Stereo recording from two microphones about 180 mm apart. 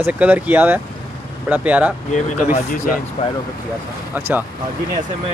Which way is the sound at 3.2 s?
30° left (ahead or behind).